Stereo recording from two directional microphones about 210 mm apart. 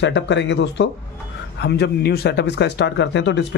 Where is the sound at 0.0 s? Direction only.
60° left (ahead or behind).